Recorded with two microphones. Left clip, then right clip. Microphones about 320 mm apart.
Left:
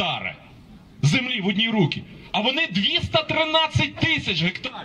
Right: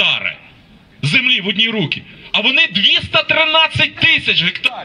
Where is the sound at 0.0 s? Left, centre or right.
Left.